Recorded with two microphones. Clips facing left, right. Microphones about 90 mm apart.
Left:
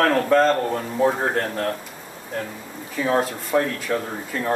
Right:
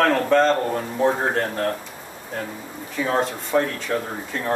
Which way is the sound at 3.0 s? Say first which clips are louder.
Left 1 dB; centre (ahead or behind).